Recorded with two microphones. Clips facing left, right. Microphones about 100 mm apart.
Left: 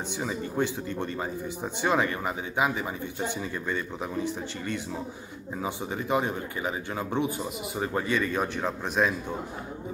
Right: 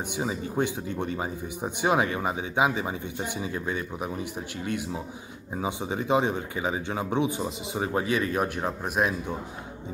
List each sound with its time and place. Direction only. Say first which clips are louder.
0.2 s speech: right 1 dB; 15° right (ahead or behind)
5.6 s speech: right 3 dB; 20° right (ahead or behind)
7.9 s speech: right 1 dB; 10° right (ahead or behind)